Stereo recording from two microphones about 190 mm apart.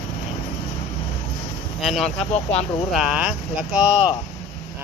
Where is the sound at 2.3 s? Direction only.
35° left (ahead or behind).